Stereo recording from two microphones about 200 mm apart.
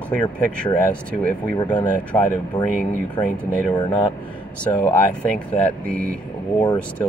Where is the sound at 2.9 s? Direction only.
5° left (ahead or behind).